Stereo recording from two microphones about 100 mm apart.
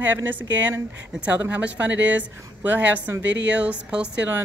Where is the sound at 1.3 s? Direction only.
15° right (ahead or behind).